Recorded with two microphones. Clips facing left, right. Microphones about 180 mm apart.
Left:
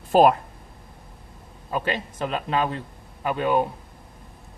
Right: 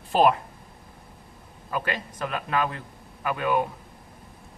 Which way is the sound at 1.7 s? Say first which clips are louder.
Left 3 dB; 25° left (ahead or behind).